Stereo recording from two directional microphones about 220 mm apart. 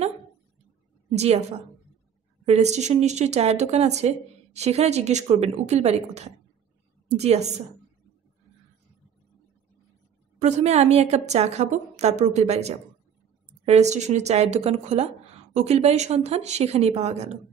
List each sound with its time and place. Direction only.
1.1 s a woman's voice: 30° right (ahead or behind)
2.4 s a woman's voice: 30° right (ahead or behind)
10.4 s a woman's voice: 30° right (ahead or behind)